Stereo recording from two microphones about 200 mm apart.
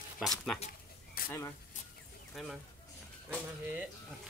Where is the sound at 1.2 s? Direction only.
45° left (ahead or behind).